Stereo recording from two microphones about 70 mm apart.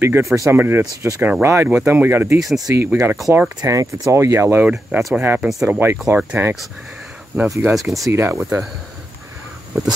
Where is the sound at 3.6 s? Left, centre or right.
Right.